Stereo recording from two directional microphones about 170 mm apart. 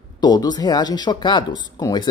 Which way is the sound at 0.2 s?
25° left (ahead or behind).